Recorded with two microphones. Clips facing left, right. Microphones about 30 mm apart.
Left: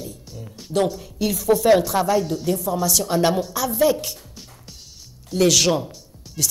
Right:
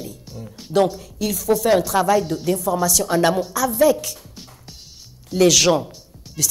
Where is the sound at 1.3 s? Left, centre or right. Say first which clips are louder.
Even; left.